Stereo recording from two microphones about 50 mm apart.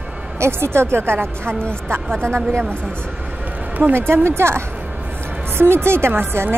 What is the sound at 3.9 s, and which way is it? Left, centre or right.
A woman's voice, right.